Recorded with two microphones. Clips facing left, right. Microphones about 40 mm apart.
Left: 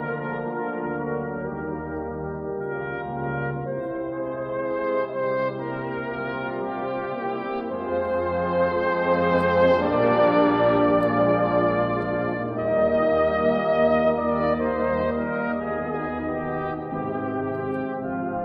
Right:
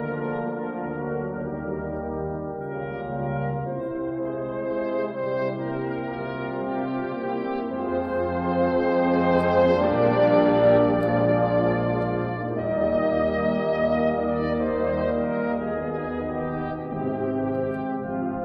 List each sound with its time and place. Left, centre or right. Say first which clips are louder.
4.9 s brass instrument: left 2 dB; centre
8.4 s music: right 1 dB; centre
9.7 s brass instrument: left 1 dB; centre
13.3 s music: left 2 dB; centre
14.2 s brass instrument: left 2 dB; centre
14.6 s brass instrument: left 1 dB; left